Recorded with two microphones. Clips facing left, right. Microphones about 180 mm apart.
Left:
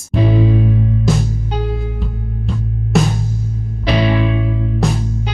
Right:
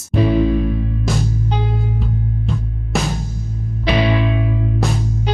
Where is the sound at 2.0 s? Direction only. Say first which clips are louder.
Right 3 dB; centre (ahead or behind).